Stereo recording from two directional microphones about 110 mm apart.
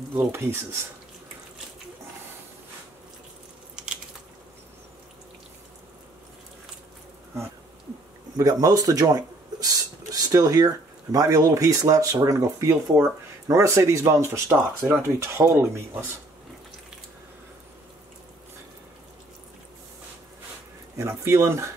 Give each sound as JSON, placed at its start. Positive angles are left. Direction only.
{"t": 0.1, "sound": "speech", "side_deg": -20}
{"t": 3.7, "sound": "biting", "side_deg": -10}
{"t": 8.4, "sound": "speech", "side_deg": -30}
{"t": 21.0, "sound": "speech", "side_deg": -25}